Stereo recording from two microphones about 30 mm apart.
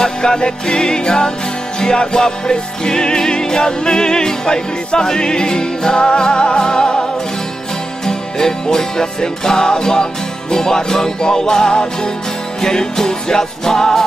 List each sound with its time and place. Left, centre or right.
0.0 s music: left